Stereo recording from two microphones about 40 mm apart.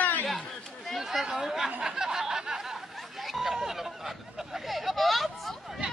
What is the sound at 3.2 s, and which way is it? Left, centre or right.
Speech, centre.